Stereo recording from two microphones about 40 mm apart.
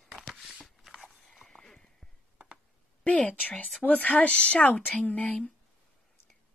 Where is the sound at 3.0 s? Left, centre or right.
Left.